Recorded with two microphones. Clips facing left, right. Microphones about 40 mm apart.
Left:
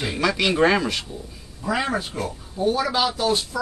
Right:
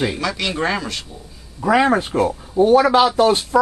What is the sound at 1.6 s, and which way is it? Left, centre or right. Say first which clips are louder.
Speech: right 9 dB; right.